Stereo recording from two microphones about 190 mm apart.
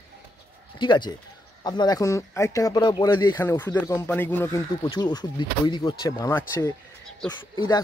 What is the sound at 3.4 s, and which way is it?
A man's voice, 10° left (ahead or behind).